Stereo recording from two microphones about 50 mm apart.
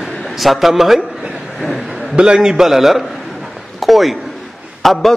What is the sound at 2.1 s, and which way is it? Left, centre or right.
A man's voice, centre.